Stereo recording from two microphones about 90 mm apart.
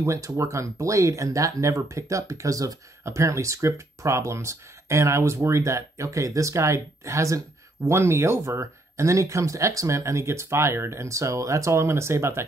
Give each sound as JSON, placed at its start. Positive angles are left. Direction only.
{"t": 0.0, "sound": "speech", "side_deg": -35}